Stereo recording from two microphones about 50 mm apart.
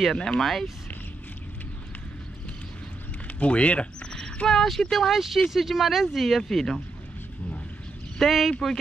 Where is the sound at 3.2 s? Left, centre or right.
Left.